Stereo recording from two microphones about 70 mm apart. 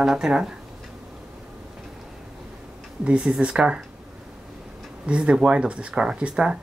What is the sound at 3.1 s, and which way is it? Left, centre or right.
Speech, centre.